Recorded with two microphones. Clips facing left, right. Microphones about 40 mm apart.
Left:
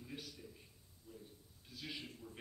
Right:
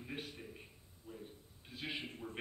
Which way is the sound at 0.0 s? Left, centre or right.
Right.